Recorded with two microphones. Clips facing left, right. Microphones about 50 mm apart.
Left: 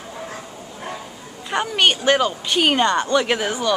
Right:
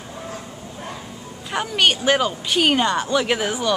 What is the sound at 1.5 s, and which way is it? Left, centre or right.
A woman's voice, centre.